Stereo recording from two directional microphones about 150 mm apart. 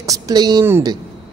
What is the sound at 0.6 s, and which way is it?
Speech, 15° right (ahead or behind).